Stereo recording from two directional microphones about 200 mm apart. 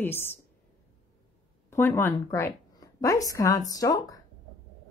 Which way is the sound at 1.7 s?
10° left (ahead or behind).